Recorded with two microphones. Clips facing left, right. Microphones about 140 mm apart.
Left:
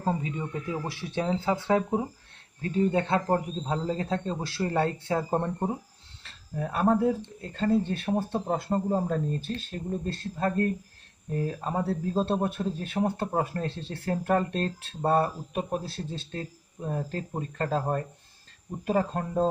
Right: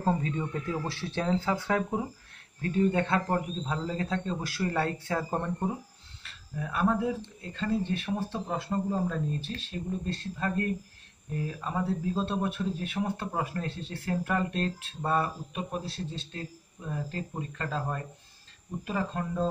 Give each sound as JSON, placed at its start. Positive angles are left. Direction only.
{"t": 0.0, "sound": "a man's voice", "side_deg": 10}